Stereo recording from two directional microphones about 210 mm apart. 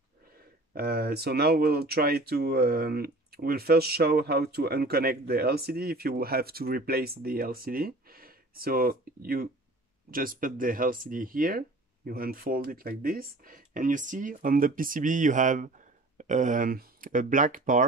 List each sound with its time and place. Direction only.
0.7 s speech: 45° right (ahead or behind)